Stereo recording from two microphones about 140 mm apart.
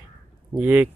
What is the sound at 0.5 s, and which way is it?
Speech, 10° right (ahead or behind).